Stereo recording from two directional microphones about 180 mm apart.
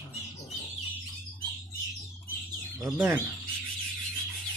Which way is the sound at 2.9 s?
10° right (ahead or behind).